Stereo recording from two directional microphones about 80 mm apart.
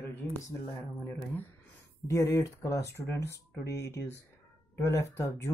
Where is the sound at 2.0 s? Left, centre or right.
Left.